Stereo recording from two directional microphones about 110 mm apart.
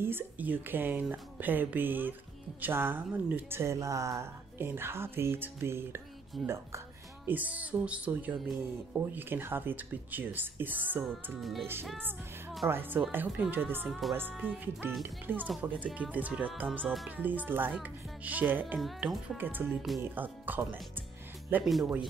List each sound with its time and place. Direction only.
0.0 s speech: 20° right (ahead or behind)
11.3 s music: centre (ahead or behind)
12.6 s speech: 20° right (ahead or behind)
13.8 s music: centre (ahead or behind)
14.4 s speech: 15° right (ahead or behind)